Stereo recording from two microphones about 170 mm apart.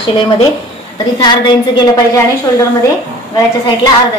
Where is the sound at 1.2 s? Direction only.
25° left (ahead or behind).